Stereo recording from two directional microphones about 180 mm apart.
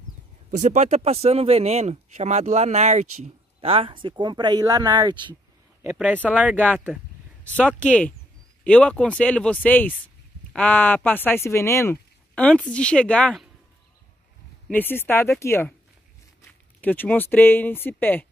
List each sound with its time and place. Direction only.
0.5 s speech: 40° right (ahead or behind); by 5.3 s 25° right (ahead or behind)
5.9 s speech: 10° right (ahead or behind)
7.5 s speech: 5° left (ahead or behind)
14.7 s speech: 10° left (ahead or behind)
16.8 s speech: 10° left (ahead or behind)